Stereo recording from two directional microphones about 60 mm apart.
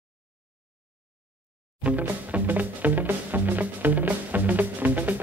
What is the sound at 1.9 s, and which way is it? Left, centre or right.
Music, right.